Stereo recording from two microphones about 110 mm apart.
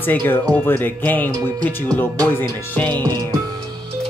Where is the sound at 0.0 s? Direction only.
15° left (ahead or behind).